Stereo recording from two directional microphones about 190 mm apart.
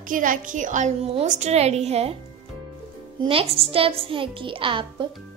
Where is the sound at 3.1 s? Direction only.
30° right (ahead or behind).